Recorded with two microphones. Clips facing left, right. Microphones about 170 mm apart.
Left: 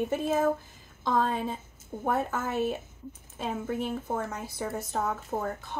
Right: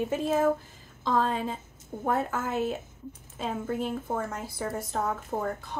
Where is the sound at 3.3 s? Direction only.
10° left (ahead or behind).